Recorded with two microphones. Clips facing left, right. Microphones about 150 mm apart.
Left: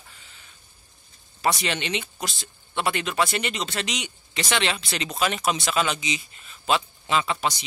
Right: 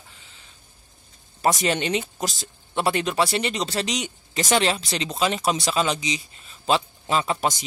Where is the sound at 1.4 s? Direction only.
45° right (ahead or behind).